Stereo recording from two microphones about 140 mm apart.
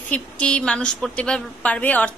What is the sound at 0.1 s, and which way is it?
A woman's voice, 5° left (ahead or behind).